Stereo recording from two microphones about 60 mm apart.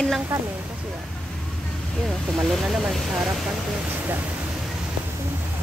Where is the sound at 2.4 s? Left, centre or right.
Centre.